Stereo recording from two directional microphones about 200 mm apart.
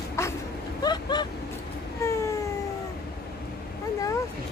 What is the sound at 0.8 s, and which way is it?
Vehicle, 20° left (ahead or behind).